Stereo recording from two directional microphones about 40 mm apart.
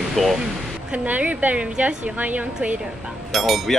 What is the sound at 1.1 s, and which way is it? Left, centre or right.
A woman's voice, right.